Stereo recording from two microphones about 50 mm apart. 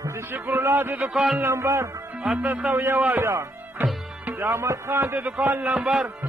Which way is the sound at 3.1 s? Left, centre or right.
Right.